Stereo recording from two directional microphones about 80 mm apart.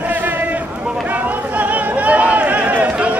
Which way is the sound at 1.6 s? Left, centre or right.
Centre.